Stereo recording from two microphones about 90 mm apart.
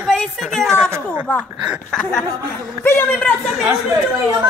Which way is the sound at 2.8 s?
25° left (ahead or behind).